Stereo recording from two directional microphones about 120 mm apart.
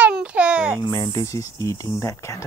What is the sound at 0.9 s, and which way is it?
Speech, 30° left (ahead or behind).